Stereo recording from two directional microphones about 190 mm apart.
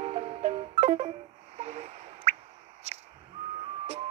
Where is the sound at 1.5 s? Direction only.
35° right (ahead or behind).